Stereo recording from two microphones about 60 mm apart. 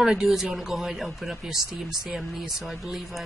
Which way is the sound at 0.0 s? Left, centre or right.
Centre.